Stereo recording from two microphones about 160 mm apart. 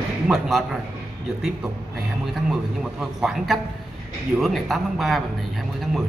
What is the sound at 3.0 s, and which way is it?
A man's voice, 5° right (ahead or behind).